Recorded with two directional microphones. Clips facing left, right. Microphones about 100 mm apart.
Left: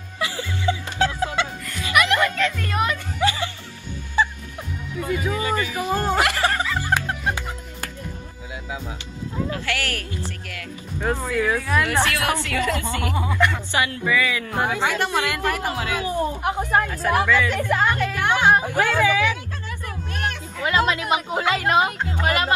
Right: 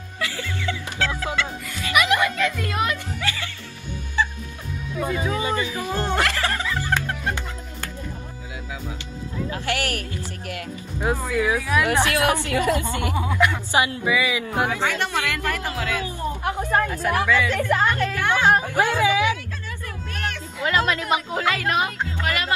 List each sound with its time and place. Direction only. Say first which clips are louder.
0.2 s music: left 2 dB; 15° left (ahead or behind)
1.7 s music: even; 10° right (ahead or behind)
3.2 s music: left 7 dB; 20° left (ahead or behind)
5.0 s speech: even; 25° right (ahead or behind)
5.8 s speech: left 3 dB; 15° left (ahead or behind)
6.2 s music: left 3 dB; 20° left (ahead or behind)
9.5 s speech: right 1 dB; 20° right (ahead or behind)
11.1 s speech: even; 10° right (ahead or behind)
13.1 s speech: even; 5° right (ahead or behind)
14.7 s speech: left 2 dB; 20° left (ahead or behind)
17.5 s music: even; 15° left (ahead or behind)
18.8 s speech: even; 20° right (ahead or behind)
20.1 s a sound: left 2 dB; 20° left (ahead or behind)
20.6 s speech: left 1 dB; 20° left (ahead or behind)